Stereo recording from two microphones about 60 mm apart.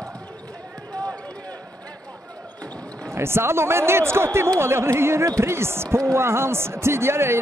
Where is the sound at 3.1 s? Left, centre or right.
Right.